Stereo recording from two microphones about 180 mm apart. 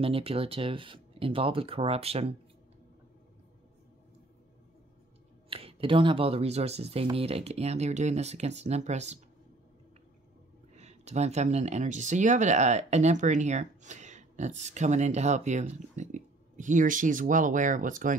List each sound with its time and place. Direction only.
0.0 s speech: 30° right (ahead or behind)
5.5 s speech: 30° right (ahead or behind)
10.7 s speech: 40° right (ahead or behind)